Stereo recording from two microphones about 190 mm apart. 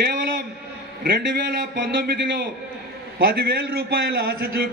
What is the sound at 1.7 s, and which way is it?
A man's voice, 65° right (ahead or behind).